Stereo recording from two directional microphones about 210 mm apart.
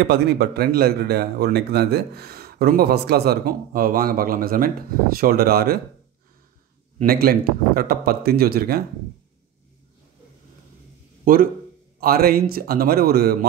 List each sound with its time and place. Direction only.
0.0 s speech: 50° right (ahead or behind)
7.0 s speech: 45° right (ahead or behind)
11.2 s speech: 40° right (ahead or behind)